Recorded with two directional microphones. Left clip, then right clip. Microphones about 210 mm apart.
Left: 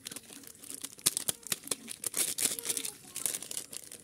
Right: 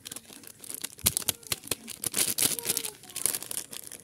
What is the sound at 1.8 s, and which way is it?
Tearing, 20° right (ahead or behind).